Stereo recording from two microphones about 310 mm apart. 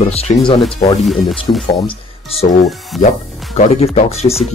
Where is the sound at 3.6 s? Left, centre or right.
Left.